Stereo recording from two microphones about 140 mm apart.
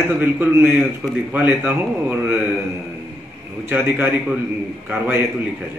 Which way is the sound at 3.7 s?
15° right (ahead or behind).